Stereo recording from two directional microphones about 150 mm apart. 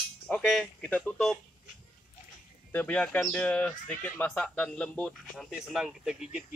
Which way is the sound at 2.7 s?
10° left (ahead or behind).